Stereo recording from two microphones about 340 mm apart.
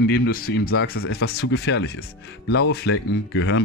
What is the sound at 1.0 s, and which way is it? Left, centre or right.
Speech, left.